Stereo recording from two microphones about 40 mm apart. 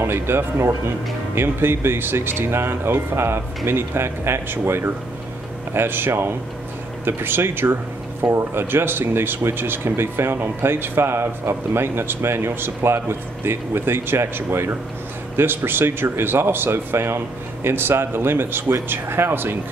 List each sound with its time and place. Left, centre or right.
0.0 s speech: right
5.7 s speech: right
15.3 s speech: right
17.6 s speech: right